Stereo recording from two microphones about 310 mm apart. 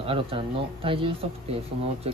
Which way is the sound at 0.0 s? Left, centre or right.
Centre.